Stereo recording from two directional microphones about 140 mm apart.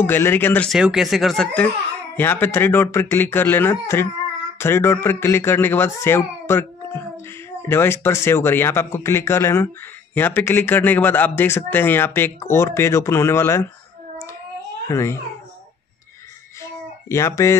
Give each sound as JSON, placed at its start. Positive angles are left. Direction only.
{"t": 0.0, "sound": "speech", "side_deg": 15}
{"t": 0.7, "sound": "speech", "side_deg": -5}
{"t": 14.9, "sound": "speech", "side_deg": 20}
{"t": 17.1, "sound": "speech", "side_deg": 20}